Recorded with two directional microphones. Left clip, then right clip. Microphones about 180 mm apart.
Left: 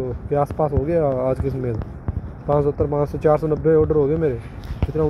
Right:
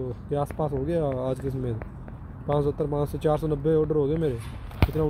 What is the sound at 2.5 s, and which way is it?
Speech, 5° right (ahead or behind).